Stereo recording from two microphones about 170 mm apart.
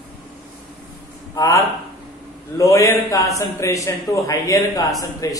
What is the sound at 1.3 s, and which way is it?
A man's voice, 20° left (ahead or behind).